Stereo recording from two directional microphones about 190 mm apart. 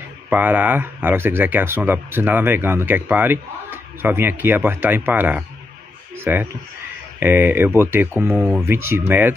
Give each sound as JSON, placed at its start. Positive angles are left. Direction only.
{"t": 0.3, "sound": "speech", "side_deg": -10}